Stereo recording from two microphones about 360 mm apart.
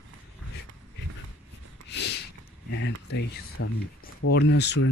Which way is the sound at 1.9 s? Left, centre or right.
Left.